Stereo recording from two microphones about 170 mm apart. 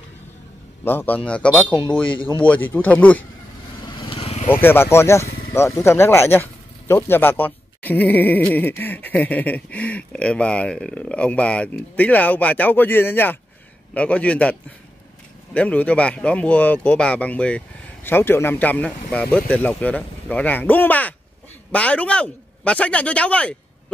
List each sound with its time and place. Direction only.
0.8 s speech: 10° left (ahead or behind)
4.0 s vehicle: 35° left (ahead or behind)
4.6 s speech: 15° left (ahead or behind)